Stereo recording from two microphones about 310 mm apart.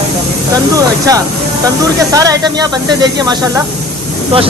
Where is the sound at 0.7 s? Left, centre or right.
Centre.